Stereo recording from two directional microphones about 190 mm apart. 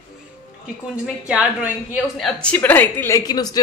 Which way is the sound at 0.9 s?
5° right (ahead or behind).